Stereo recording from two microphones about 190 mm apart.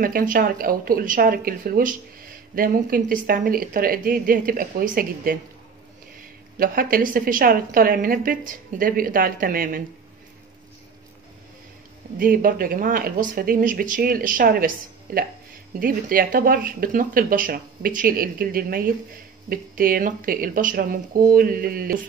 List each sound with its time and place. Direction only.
0.0 s speech: 50° right (ahead or behind)
6.6 s speech: 50° right (ahead or behind)
12.2 s speech: 45° right (ahead or behind)